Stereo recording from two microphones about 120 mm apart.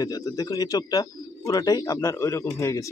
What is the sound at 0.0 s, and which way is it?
Speech, 30° left (ahead or behind).